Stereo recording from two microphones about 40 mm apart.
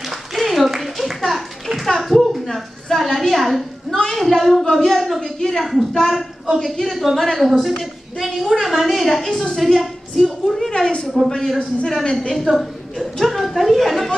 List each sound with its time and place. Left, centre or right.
0.3 s a sound: centre
4.6 s a woman's voice: centre
4.9 s a woman's voice: centre
9.3 s a man's voice: centre
9.6 s a woman's voice: centre
10.1 s a sound: centre
11.2 s a man's voice: centre
12.0 s a woman's voice: left
12.4 s a woman's voice: centre